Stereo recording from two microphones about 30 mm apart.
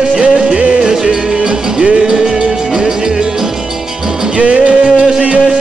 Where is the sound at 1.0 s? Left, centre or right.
Right.